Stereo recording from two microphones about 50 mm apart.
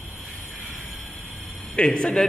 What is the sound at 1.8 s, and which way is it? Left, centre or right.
Speech, left.